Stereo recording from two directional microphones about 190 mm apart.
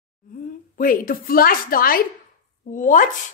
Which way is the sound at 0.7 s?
45° left (ahead or behind).